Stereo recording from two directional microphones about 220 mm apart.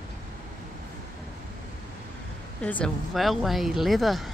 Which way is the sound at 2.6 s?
5° left (ahead or behind).